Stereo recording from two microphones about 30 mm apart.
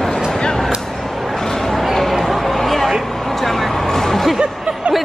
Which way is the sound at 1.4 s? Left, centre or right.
Centre.